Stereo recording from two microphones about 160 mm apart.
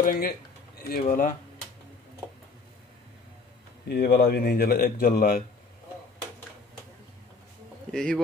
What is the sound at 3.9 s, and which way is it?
A man's voice, 85° left.